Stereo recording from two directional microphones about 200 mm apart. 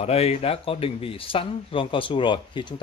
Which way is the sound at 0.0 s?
30° left (ahead or behind).